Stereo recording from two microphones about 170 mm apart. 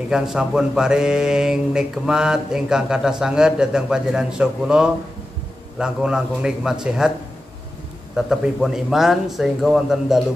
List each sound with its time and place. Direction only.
0.1 s mantra: 5° right (ahead or behind)
8.3 s mantra: centre (ahead or behind)